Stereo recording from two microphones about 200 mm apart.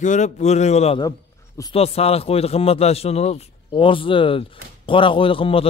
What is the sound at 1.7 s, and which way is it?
A man's voice, 30° left (ahead or behind).